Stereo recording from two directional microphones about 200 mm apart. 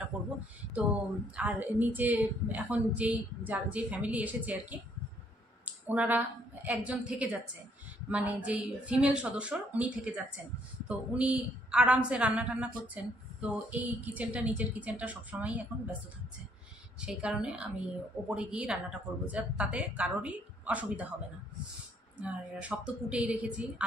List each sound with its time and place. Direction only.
1.3 s a woman's voice: 10° right (ahead or behind)
17.0 s a woman's voice: 5° right (ahead or behind)
22.2 s a woman's voice: 5° right (ahead or behind)